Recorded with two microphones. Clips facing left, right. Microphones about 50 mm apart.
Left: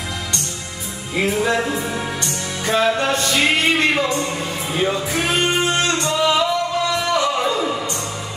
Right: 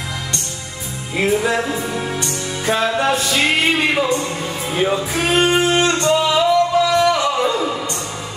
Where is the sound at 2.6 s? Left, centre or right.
Centre.